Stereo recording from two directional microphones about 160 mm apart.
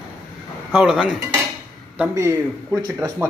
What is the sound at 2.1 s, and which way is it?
Speech, 20° right (ahead or behind).